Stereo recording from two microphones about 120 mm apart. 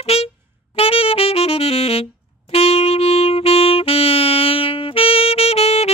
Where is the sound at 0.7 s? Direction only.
55° left (ahead or behind).